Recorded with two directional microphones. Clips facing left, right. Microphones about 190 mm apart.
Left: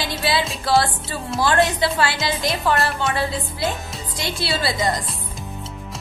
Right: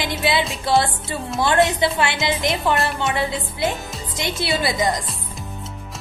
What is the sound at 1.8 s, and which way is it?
Speech, 20° right (ahead or behind).